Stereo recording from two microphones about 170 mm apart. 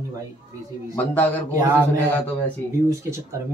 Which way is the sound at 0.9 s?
10° left (ahead or behind).